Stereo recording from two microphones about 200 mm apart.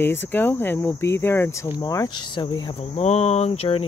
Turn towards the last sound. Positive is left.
turn(degrees=30)  # may be behind; listen again after turning